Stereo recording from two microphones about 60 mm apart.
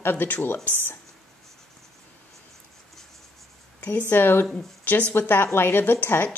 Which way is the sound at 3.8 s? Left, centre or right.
Left.